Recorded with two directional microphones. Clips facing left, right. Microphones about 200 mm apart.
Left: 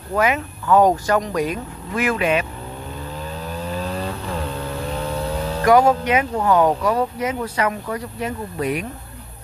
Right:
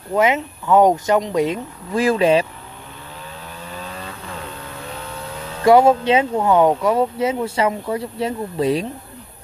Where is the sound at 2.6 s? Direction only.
40° left (ahead or behind).